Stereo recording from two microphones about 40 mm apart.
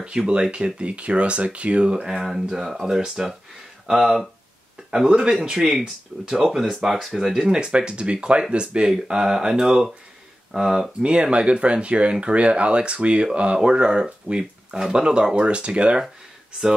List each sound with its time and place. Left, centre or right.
0.3 s speech: right
2.1 s speech: centre
5.0 s speech: right
6.3 s speech: centre
7.5 s speech: right